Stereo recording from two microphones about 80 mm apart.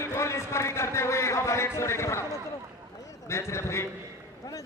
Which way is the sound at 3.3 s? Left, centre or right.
Left.